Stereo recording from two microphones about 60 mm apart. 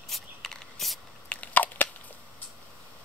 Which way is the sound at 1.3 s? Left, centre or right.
Left.